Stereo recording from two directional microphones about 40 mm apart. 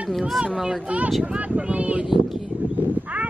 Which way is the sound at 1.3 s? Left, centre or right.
Right.